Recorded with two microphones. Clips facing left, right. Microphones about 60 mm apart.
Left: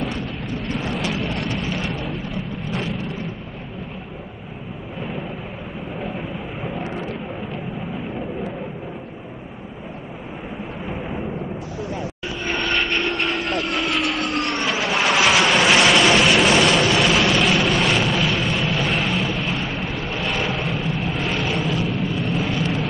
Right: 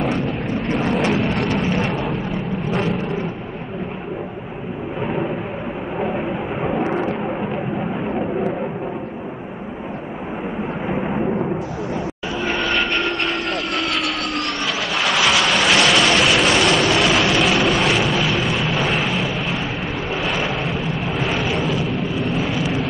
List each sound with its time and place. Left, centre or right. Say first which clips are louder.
0.7 s vehicle: right 6 dB; right
1.1 s a sound: right 6 dB; right
6.0 s vehicle: right 6 dB; right
12.4 s vehicle: right 1 dB; centre